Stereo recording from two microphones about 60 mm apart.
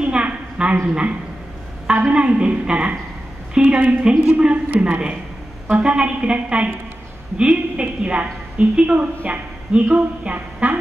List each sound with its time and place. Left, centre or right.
0.0 s a sound: centre
1.9 s a woman's voice: centre
4.0 s a woman's voice: centre